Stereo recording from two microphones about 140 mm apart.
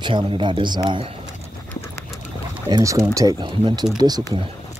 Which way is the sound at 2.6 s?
30° right (ahead or behind).